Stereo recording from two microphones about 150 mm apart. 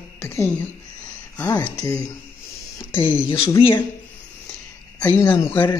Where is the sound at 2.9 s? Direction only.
35° left (ahead or behind).